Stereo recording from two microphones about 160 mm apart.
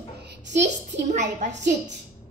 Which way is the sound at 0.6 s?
50° right (ahead or behind).